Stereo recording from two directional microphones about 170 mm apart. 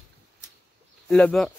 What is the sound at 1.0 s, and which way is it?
Speech, 5° left (ahead or behind).